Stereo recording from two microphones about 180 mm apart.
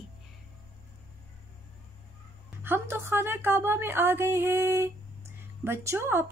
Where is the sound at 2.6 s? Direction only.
10° right (ahead or behind).